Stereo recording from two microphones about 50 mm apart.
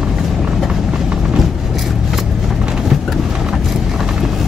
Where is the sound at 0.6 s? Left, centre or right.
Centre.